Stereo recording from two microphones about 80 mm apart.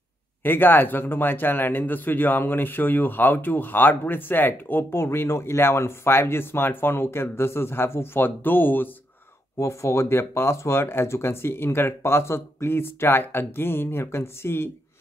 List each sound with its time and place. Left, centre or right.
0.4 s speech: left
9.6 s speech: left